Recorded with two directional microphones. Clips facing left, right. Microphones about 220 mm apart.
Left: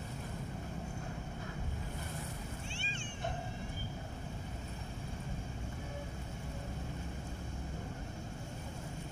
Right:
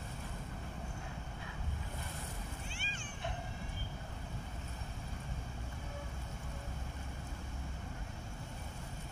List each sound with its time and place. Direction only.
2.7 s music: 25° left (ahead or behind)